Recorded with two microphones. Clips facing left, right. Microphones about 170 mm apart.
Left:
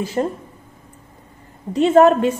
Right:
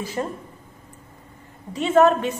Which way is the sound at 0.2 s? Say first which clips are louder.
Left 6 dB; 35° left (ahead or behind).